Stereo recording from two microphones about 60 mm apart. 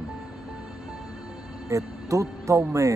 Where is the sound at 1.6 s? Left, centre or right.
Right.